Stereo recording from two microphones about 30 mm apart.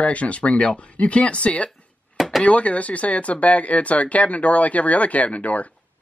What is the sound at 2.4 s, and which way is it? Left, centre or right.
Speech, left.